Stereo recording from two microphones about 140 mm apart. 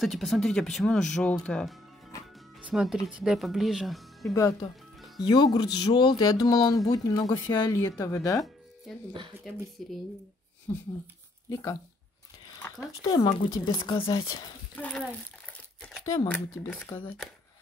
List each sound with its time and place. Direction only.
0.0 s speech: centre (ahead or behind)
2.6 s speech: 5° right (ahead or behind)
4.3 s speech: 25° left (ahead or behind)
9.5 s speech: centre (ahead or behind)
10.7 s speech: 20° left (ahead or behind)
14.8 s crumpling: 10° left (ahead or behind)
16.1 s speech: 25° left (ahead or behind)
16.6 s speech: 10° left (ahead or behind)